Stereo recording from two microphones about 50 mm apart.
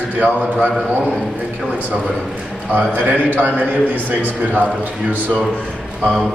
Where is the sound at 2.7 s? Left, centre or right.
Right.